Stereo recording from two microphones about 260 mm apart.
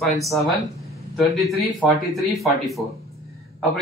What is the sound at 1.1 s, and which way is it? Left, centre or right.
Speech, centre.